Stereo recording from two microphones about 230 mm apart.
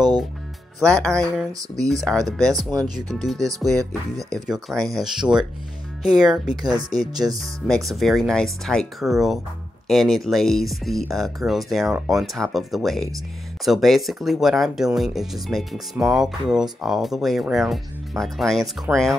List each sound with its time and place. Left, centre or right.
1.0 s speech: centre
3.3 s speech: centre
4.5 s speech: centre
6.5 s speech: centre
7.6 s speech: centre